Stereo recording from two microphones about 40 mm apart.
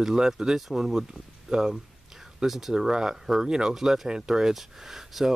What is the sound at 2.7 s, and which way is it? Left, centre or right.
Speech, centre.